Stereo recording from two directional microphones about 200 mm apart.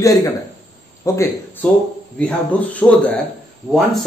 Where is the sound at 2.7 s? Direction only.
5° left (ahead or behind).